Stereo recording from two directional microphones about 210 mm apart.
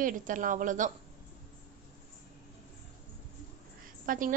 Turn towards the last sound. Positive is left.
turn(degrees=-40)  # may be behind; listen again after turning